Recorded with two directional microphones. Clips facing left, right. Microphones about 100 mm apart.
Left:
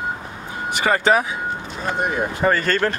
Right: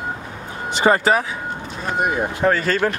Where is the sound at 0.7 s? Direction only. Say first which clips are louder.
Right 4 dB; 25° right (ahead or behind).